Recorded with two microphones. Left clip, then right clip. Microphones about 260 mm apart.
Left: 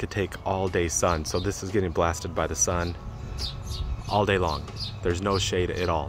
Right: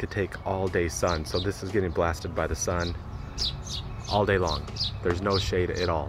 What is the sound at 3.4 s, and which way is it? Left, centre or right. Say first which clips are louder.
Bird: right 5 dB; centre.